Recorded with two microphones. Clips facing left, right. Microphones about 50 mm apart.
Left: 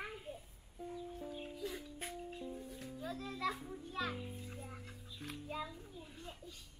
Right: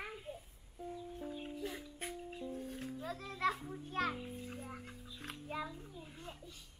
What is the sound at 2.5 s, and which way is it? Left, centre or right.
Music, right.